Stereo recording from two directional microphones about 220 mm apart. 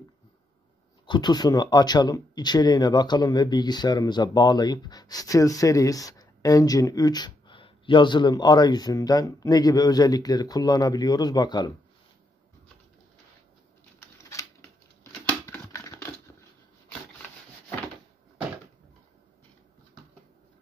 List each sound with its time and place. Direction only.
1.0 s speech: 20° left (ahead or behind)
15.4 s computer keyboard: 15° left (ahead or behind)